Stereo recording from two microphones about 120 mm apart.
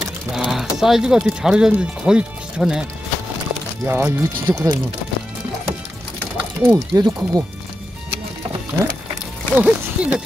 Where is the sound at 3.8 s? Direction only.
20° right (ahead or behind).